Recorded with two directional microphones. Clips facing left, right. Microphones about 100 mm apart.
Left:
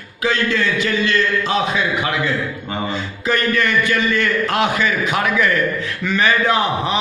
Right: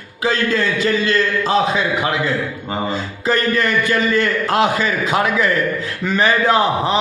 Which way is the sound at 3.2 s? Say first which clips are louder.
Right 1 dB; 35° right (ahead or behind).